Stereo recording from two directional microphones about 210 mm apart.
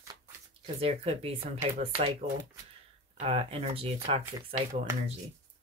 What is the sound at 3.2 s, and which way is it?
Speech, 30° right (ahead or behind).